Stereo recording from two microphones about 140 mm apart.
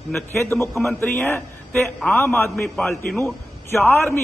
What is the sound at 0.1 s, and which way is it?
A man's voice, 15° left (ahead or behind).